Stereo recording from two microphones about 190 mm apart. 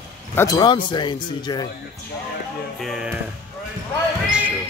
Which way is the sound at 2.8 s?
Centre (ahead or behind).